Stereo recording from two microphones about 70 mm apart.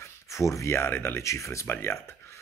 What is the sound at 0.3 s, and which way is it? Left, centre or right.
Speech, left.